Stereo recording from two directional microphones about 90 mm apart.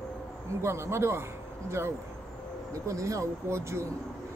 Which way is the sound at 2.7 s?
35° right (ahead or behind).